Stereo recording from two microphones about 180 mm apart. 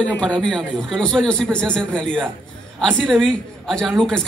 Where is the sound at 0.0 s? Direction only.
5° left (ahead or behind).